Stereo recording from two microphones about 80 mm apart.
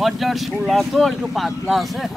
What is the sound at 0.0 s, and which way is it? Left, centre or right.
Speech, centre.